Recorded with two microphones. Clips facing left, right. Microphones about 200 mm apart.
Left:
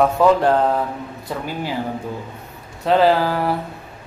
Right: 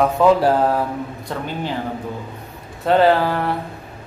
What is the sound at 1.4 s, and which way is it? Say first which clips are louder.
Speech: right 1 dB; 10° left (ahead or behind).